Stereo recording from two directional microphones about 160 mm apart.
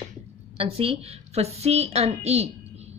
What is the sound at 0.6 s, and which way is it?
A woman's voice, 40° right (ahead or behind).